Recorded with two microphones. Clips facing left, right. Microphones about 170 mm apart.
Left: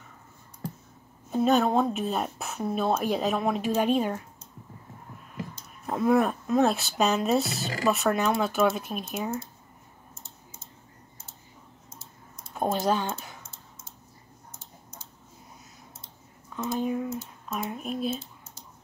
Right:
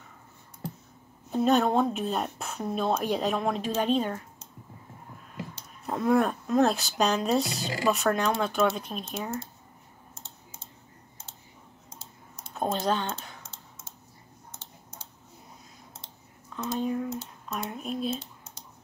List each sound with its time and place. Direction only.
1.3 s speech: centre (ahead or behind)
5.9 s speech: centre (ahead or behind)
12.5 s speech: 10° left (ahead or behind)
16.5 s speech: 5° left (ahead or behind)
18.2 s typing: 75° right (ahead or behind)